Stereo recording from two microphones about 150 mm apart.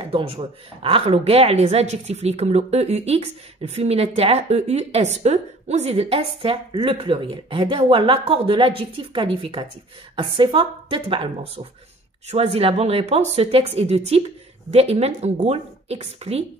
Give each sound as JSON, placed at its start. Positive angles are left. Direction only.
{"t": 0.0, "sound": "speech", "side_deg": -40}